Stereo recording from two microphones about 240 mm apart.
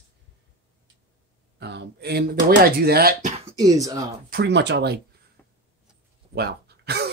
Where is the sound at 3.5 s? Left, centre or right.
Centre.